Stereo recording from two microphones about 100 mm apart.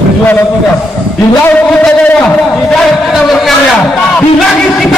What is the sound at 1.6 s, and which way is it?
A man's voice, 15° left (ahead or behind).